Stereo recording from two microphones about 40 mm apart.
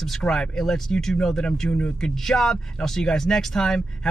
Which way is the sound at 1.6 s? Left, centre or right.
Left.